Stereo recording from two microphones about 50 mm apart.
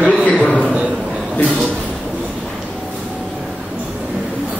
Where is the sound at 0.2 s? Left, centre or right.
Left.